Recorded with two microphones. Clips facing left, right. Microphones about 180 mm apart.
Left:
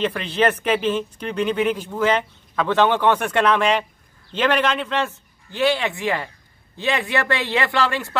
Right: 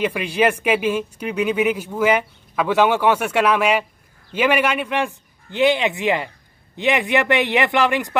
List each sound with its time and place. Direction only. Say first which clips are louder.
0.0 s a man's voice: right 1 dB; 10° right (ahead or behind)